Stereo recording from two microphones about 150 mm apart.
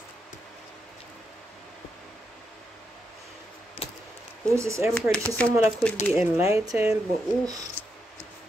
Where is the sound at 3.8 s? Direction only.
40° left (ahead or behind).